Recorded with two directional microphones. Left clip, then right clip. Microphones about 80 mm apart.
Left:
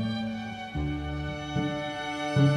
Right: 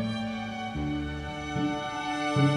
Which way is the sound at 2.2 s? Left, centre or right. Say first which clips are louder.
Even; right.